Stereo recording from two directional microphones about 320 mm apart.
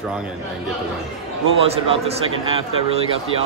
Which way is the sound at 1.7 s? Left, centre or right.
Centre.